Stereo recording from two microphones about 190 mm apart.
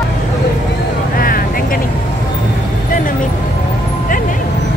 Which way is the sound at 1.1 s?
50° left (ahead or behind).